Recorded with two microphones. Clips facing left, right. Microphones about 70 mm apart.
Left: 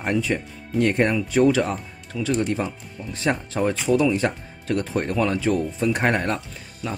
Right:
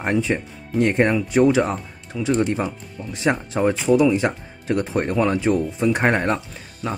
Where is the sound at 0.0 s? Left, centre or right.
Right.